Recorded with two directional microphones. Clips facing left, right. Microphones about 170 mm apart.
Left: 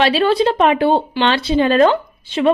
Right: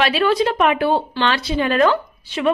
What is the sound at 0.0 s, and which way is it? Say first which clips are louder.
A woman's voice: left 3 dB; 30° left (ahead or behind).